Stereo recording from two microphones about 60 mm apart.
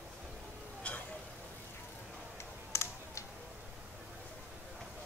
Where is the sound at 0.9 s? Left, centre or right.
Left.